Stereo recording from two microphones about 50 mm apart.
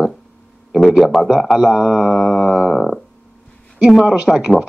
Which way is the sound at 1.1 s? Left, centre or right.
Centre.